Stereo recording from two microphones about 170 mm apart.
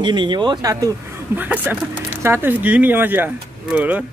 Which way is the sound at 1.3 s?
10° right (ahead or behind).